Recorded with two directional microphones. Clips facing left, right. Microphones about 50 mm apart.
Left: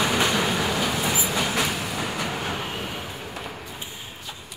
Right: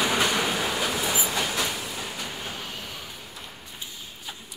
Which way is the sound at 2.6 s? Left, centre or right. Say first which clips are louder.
Left 6 dB; left.